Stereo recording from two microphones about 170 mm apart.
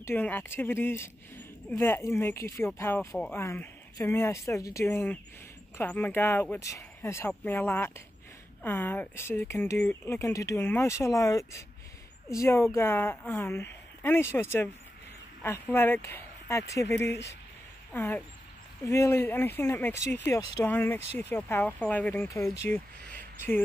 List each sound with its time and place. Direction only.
0.0 s speech: 10° left (ahead or behind)
17.1 s speech: 90° left
17.9 s speech: 10° left (ahead or behind)